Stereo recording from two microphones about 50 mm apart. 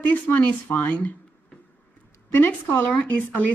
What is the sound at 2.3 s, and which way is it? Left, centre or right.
Speech, left.